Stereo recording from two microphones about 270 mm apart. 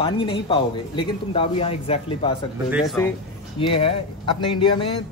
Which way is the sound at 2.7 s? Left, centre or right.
Centre.